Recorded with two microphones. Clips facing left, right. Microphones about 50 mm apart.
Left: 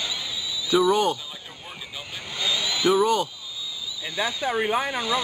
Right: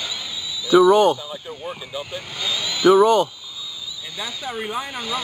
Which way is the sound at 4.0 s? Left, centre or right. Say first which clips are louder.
Left 5 dB; left.